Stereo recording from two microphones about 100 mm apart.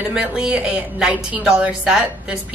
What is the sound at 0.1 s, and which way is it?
A woman's voice, 10° right (ahead or behind).